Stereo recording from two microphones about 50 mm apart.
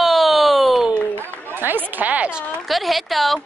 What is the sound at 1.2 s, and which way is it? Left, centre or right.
Speech, right.